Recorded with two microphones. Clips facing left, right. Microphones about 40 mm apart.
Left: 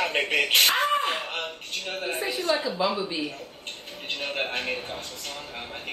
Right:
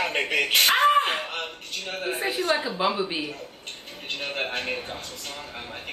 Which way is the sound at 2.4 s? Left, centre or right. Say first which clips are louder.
Right 1 dB; centre.